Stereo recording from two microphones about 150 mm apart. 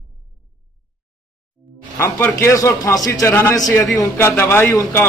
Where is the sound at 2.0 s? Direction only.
15° left (ahead or behind).